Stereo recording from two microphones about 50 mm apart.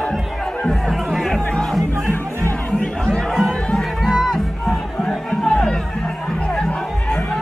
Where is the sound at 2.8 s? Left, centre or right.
Centre.